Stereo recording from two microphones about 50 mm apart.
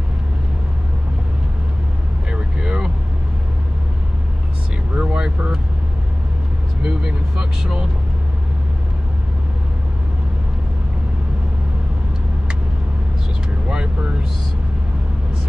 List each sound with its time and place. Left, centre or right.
2.3 s vehicle: centre
4.9 s vehicle: centre
6.8 s vehicle: centre
13.7 s vehicle: centre